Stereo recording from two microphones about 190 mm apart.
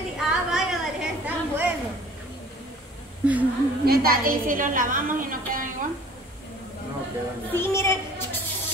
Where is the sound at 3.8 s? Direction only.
50° right (ahead or behind).